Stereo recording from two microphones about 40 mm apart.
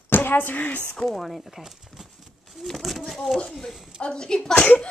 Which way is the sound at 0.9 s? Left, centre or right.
Centre.